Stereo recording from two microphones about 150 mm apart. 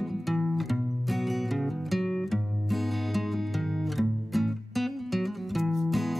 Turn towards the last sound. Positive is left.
turn(degrees=0)  # may be behind; listen again after turning